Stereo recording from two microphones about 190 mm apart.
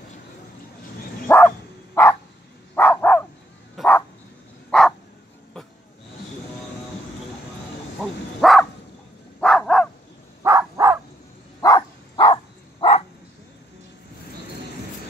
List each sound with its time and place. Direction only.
1.2 s bow-wow: 10° left (ahead or behind)
2.0 s dog: 10° left (ahead or behind)
8.0 s dog: centre (ahead or behind)
10.4 s a sound: 15° right (ahead or behind)
11.6 s a sound: 20° left (ahead or behind)
12.8 s bow-wow: 25° left (ahead or behind)